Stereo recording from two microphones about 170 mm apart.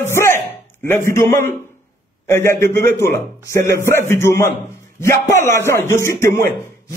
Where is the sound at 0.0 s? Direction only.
15° left (ahead or behind).